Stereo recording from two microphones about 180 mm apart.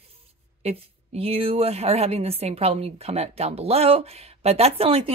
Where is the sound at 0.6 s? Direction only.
35° right (ahead or behind).